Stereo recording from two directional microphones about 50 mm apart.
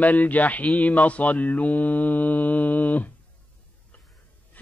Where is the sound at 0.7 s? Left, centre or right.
Left.